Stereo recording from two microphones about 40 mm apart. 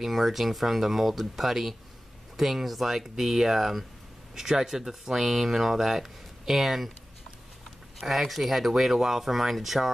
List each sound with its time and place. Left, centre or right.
0.0 s speech: centre
8.0 s speech: centre